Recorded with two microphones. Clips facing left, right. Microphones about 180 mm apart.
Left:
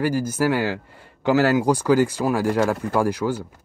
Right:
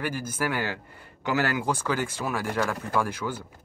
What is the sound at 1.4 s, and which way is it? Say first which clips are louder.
A man's voice: left 8 dB; 35° left (ahead or behind).